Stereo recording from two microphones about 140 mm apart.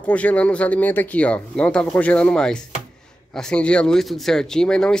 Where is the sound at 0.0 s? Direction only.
10° left (ahead or behind).